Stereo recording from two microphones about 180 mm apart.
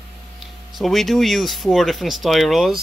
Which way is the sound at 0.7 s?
Centre (ahead or behind).